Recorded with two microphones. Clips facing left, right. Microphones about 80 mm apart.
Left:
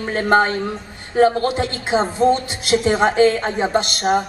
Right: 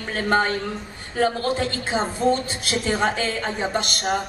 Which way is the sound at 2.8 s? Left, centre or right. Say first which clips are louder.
Left 8 dB; left.